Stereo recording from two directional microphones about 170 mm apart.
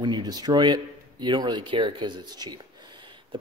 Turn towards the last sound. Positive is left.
turn(degrees=-25)  # may be behind; listen again after turning